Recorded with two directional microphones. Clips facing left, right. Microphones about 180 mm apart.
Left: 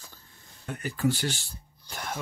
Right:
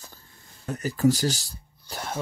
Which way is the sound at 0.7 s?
40° right (ahead or behind).